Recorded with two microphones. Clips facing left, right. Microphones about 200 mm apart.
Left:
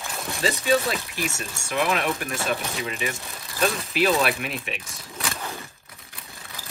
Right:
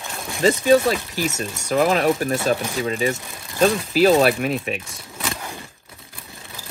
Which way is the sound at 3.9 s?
40° right (ahead or behind).